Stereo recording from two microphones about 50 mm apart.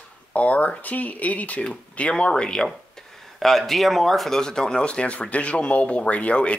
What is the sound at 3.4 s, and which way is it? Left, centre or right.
Speech, centre.